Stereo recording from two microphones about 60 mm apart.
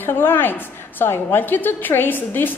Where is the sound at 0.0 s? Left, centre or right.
Left.